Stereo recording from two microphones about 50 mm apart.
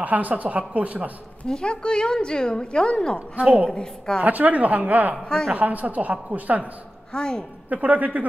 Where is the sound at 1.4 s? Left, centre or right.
Centre.